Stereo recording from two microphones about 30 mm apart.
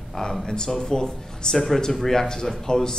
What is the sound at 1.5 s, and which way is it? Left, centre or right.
Speech, centre.